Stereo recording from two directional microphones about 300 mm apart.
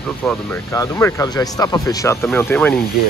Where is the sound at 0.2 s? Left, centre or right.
Centre.